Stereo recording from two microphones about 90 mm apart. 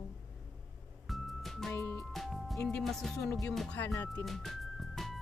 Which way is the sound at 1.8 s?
25° left (ahead or behind).